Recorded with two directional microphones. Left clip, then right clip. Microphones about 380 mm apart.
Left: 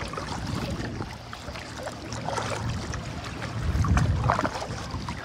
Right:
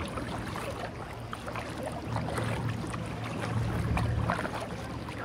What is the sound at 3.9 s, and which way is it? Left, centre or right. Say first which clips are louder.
Boat: left 7 dB; centre.